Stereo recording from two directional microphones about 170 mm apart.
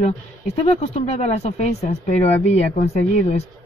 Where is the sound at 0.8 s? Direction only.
40° left (ahead or behind).